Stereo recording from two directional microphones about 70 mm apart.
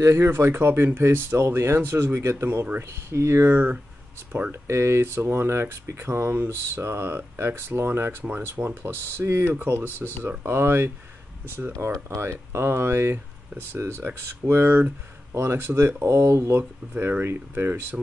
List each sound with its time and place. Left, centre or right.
0.0 s speech: right
16.9 s speech: right